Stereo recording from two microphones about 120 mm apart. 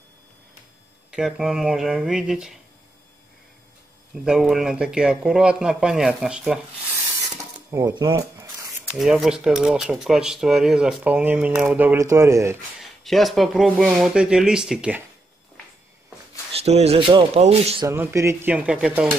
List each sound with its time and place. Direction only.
1.1 s speech: 5° right (ahead or behind)
4.1 s speech: 5° right (ahead or behind)
7.8 s speech: 40° right (ahead or behind)
8.2 s shuffling cards: 25° right (ahead or behind)
8.8 s speech: 5° right (ahead or behind); by 12.5 s 25° right (ahead or behind)
13.0 s speech: centre (ahead or behind)
16.5 s speech: 60° right (ahead or behind)
17.8 s speech: 25° right (ahead or behind)
18.5 s speech: 10° right (ahead or behind)